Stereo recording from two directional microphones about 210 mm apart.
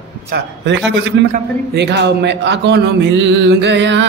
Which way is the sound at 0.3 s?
55° right (ahead or behind).